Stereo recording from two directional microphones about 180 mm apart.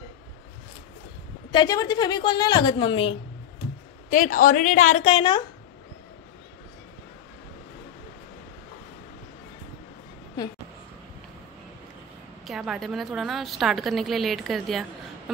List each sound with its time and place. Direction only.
1.5 s a woman's voice: 25° left (ahead or behind)
4.1 s a woman's voice: 50° left (ahead or behind)
5.0 s a woman's voice: 30° left (ahead or behind)
12.4 s a woman's voice: centre (ahead or behind)